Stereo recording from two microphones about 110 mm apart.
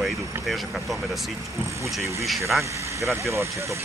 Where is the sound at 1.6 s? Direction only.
25° right (ahead or behind).